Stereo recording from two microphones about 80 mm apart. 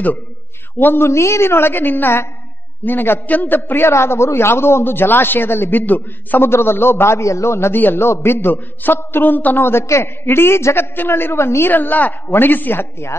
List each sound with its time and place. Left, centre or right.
0.7 s a man's voice: left